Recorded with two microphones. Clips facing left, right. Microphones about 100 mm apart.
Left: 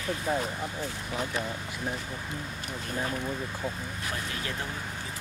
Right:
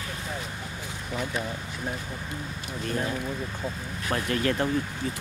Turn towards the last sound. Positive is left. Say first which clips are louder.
# right 9 dB
turn(degrees=-65)  # may be behind; listen again after turning